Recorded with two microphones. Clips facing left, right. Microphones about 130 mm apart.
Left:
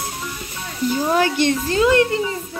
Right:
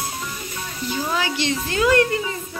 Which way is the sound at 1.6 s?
25° left (ahead or behind).